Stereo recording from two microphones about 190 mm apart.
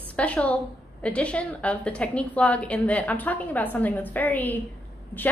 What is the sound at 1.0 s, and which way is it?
A woman's voice, 5° left (ahead or behind).